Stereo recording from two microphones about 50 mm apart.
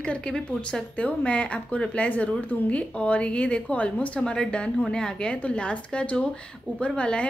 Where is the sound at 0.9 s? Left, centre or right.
Left.